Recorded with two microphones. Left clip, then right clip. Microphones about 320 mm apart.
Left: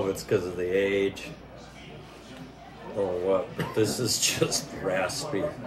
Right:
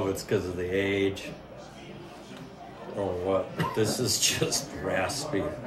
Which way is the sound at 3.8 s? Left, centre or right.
Centre.